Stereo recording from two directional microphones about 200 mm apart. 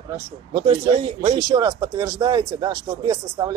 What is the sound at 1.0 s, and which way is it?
A man's voice, 25° right (ahead or behind).